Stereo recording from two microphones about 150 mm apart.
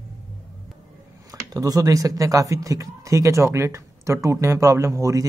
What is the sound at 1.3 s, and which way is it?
Speech, 25° right (ahead or behind).